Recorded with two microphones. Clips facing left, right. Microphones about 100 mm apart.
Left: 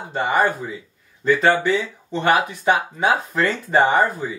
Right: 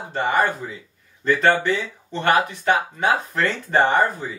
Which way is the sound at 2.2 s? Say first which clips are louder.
Left 1 dB; 15° left (ahead or behind).